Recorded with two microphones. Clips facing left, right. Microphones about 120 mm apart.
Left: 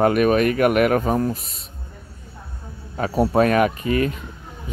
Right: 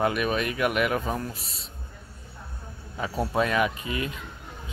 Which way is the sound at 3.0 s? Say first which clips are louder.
Left 8 dB; 55° left (ahead or behind).